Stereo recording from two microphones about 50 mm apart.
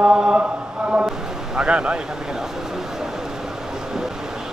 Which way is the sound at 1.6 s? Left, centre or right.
Centre.